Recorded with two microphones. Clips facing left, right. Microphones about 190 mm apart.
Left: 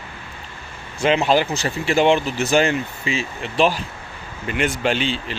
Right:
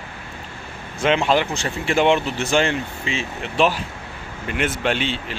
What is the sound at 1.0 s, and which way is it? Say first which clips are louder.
Speech: left 1 dB; centre (ahead or behind).